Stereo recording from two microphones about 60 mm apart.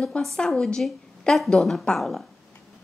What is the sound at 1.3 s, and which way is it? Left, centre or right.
Speech, centre.